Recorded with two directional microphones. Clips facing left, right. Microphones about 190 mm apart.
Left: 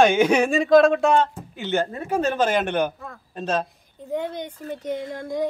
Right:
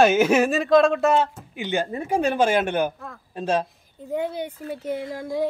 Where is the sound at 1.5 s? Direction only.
15° right (ahead or behind).